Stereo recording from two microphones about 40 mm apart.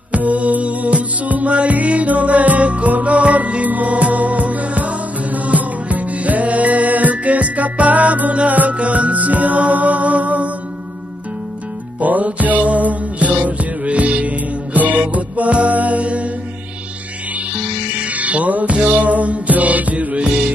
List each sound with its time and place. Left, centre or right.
0.1 s music: right
12.0 s music: right
17.9 s music: right